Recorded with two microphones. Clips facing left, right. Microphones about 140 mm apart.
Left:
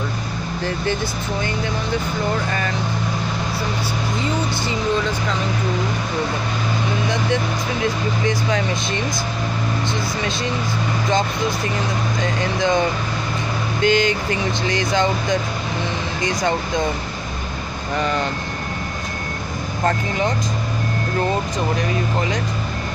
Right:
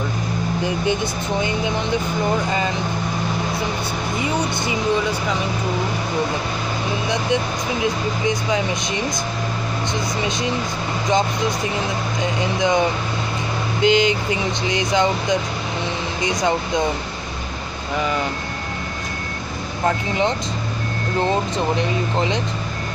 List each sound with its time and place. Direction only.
4.2 s speech: 15° right (ahead or behind)
7.8 s speech: 15° right (ahead or behind)
12.2 s speech: 15° right (ahead or behind)
13.8 s speech: 15° right (ahead or behind)
21.7 s speech: 25° right (ahead or behind)